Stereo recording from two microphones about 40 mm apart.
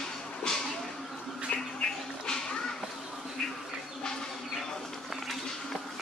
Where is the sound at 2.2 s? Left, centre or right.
Left.